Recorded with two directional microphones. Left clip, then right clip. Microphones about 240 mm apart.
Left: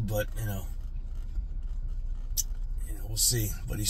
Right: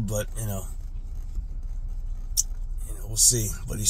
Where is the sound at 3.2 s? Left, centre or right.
Centre.